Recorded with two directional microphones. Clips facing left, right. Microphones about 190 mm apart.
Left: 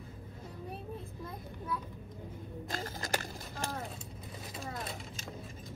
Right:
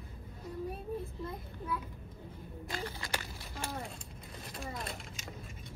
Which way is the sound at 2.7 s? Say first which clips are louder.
Left 2 dB; 45° left (ahead or behind).